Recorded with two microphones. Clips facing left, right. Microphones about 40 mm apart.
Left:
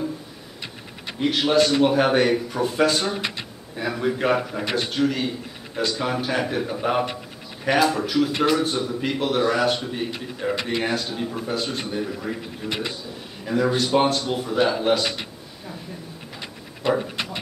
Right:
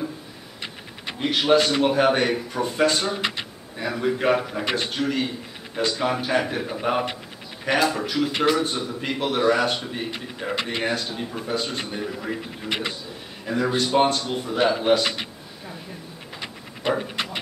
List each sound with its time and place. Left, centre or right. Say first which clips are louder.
1.2 s a man's voice: even; centre
12.6 s a man's voice: even; right
13.5 s a man's voice: left 2 dB; centre
17.0 s dog: even; right